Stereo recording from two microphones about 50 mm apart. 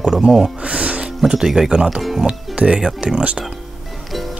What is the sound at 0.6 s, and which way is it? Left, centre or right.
Music, right.